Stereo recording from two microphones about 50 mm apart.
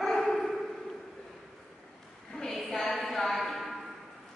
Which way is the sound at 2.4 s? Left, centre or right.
Centre.